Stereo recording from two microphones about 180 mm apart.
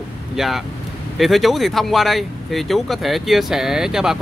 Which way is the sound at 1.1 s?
Centre (ahead or behind).